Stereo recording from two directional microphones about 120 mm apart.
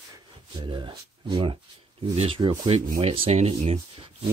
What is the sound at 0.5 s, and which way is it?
Speech, 45° right (ahead or behind).